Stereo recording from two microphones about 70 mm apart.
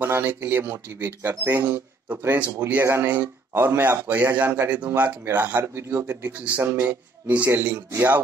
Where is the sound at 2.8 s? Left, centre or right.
Right.